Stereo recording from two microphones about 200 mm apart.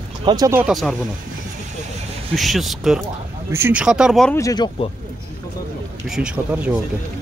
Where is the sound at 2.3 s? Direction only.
Centre (ahead or behind).